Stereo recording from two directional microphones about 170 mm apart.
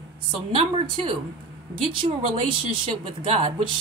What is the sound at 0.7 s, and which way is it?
Speech, 30° right (ahead or behind).